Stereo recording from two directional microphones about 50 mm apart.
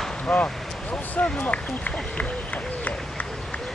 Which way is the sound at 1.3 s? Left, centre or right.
Left.